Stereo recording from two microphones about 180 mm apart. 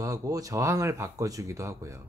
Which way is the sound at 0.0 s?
20° right (ahead or behind).